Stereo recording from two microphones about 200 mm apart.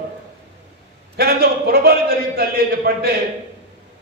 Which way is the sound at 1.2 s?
50° right (ahead or behind).